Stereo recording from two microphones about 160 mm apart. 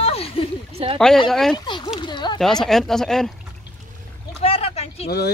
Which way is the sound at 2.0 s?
30° left (ahead or behind).